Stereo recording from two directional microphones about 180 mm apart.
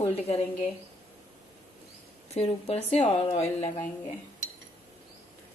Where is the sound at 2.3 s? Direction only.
35° left (ahead or behind).